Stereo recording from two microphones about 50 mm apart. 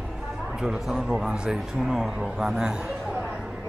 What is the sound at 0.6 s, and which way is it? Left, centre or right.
A man's voice, centre.